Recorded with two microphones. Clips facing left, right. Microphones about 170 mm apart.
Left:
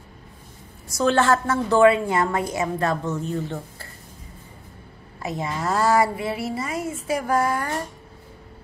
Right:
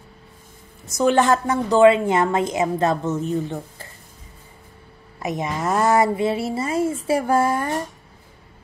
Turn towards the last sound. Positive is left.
turn(degrees=-25)  # may be behind; listen again after turning